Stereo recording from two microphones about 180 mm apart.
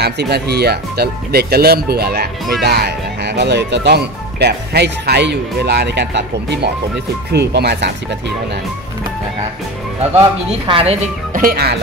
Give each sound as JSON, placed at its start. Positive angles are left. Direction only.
{"t": 0.0, "sound": "speech", "side_deg": -65}
{"t": 10.7, "sound": "speech", "side_deg": -30}
{"t": 11.3, "sound": "speech", "side_deg": -55}